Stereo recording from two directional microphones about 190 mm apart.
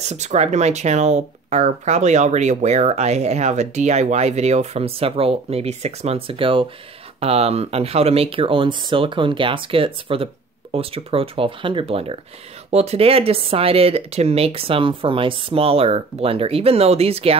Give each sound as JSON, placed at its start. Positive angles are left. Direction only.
{"t": 0.1, "sound": "speech", "side_deg": -35}